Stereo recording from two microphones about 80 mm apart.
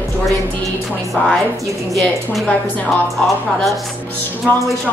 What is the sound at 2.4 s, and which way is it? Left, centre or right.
Speech, left.